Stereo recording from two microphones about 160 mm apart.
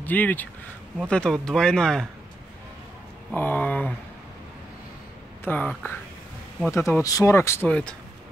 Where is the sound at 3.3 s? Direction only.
10° left (ahead or behind).